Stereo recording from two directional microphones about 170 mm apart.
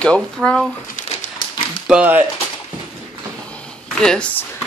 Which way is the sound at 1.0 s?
50° left (ahead or behind).